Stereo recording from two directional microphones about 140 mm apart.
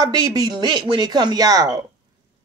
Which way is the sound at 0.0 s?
25° right (ahead or behind).